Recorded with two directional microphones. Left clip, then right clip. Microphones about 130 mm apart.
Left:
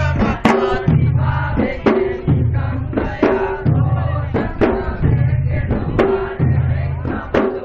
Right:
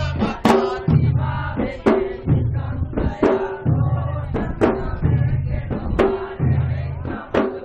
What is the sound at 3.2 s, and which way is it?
Music, 15° left (ahead or behind).